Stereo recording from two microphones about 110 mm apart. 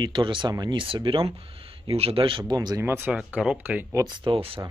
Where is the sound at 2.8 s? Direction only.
20° right (ahead or behind).